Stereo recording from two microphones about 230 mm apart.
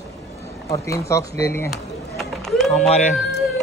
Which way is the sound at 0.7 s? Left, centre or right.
Centre.